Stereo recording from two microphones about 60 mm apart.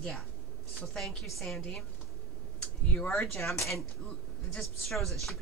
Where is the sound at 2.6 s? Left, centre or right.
Left.